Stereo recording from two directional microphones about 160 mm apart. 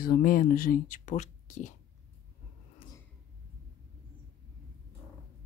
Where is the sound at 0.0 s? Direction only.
65° left (ahead or behind); by 1.7 s 50° left (ahead or behind).